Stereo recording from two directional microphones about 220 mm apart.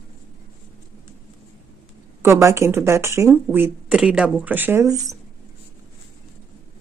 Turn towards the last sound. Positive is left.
turn(degrees=-15)  # may be behind; listen again after turning